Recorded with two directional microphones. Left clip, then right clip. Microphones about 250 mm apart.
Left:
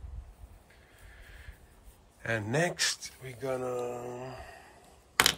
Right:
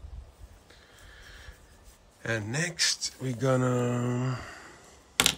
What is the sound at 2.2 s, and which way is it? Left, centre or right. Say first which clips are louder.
Speech: left 1 dB; centre.